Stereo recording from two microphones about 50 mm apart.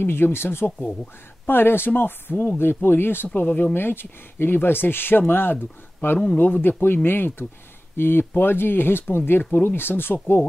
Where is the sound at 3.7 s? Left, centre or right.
Left.